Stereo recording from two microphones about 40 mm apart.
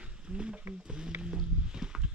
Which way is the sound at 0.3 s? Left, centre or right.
Centre.